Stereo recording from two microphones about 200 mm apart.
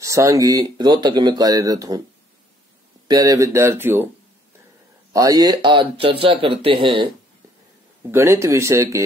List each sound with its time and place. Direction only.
0.0 s speech: 15° right (ahead or behind)
3.1 s speech: 15° right (ahead or behind)
5.1 s speech: 15° right (ahead or behind)
8.1 s speech: 15° right (ahead or behind)